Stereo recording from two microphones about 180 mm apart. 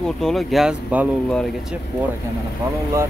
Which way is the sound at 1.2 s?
5° left (ahead or behind).